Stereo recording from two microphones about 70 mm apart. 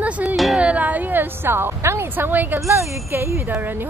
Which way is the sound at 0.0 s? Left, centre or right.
Centre.